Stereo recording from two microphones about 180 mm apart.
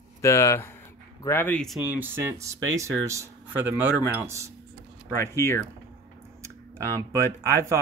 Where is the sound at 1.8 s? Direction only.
10° right (ahead or behind).